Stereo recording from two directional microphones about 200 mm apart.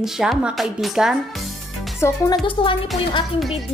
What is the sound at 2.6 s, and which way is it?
Speech, 25° left (ahead or behind).